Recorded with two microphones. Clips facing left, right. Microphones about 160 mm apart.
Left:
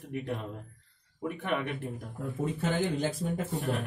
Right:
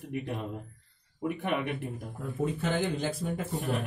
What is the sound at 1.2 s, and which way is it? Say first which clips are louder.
Speech: right 1 dB; 15° right (ahead or behind).